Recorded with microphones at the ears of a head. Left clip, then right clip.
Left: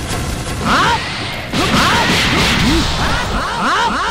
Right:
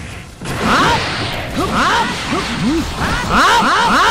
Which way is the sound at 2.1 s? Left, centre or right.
Left.